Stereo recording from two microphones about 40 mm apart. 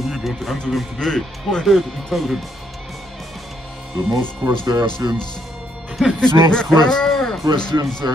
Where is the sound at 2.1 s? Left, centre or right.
Centre.